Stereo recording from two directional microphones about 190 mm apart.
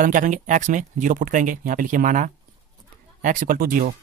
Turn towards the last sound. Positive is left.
turn(degrees=-50)  # may be behind; listen again after turning